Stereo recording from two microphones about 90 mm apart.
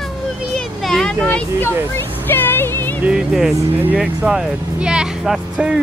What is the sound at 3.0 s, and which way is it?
Speech, 5° right (ahead or behind).